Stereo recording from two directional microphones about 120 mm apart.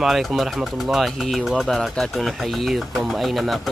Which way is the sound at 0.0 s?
Centre (ahead or behind).